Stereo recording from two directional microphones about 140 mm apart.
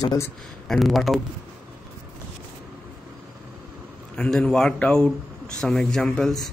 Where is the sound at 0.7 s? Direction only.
Centre (ahead or behind).